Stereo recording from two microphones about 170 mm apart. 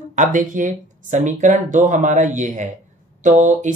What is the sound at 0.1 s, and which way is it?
Speech, 50° right (ahead or behind).